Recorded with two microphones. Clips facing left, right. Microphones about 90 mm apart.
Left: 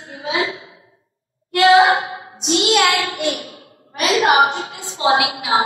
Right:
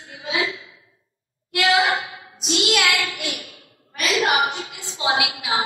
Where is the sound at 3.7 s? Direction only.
45° left (ahead or behind).